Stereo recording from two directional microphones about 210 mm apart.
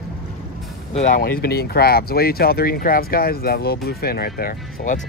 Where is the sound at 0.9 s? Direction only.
35° left (ahead or behind).